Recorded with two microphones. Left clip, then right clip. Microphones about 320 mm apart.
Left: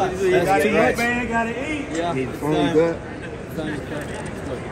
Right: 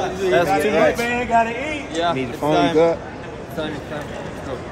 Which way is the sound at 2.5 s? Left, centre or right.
Right.